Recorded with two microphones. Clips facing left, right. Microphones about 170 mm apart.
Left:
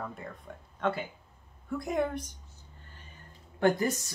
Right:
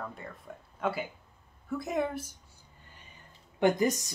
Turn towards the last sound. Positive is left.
turn(degrees=-15)  # may be behind; listen again after turning